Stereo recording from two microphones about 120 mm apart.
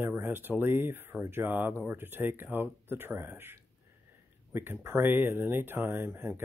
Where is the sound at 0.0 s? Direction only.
15° right (ahead or behind).